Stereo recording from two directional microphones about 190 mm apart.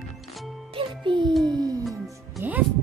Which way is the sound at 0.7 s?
25° right (ahead or behind).